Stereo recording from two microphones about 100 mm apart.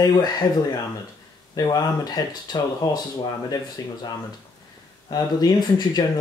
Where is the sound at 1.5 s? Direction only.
40° left (ahead or behind).